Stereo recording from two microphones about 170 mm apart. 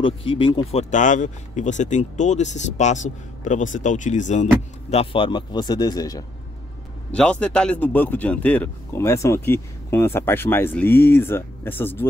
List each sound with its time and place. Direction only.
0.0 s speech: 30° left (ahead or behind)
4.9 s speech: 30° left (ahead or behind)
7.1 s a man's voice: 5° left (ahead or behind)